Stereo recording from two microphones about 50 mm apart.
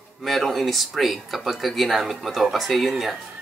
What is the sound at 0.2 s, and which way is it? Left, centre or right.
Speech, centre.